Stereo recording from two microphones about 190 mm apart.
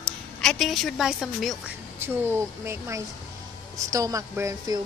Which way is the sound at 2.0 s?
10° right (ahead or behind).